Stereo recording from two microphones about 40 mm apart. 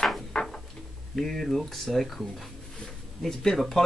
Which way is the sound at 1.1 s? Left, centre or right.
Centre.